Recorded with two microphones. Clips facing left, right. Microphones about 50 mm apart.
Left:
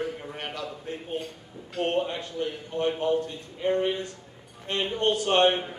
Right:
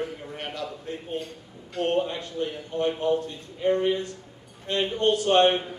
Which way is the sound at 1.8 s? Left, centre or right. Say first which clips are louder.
Right 2 dB; left.